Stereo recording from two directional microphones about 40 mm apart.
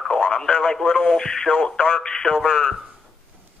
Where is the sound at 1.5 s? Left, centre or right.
Left.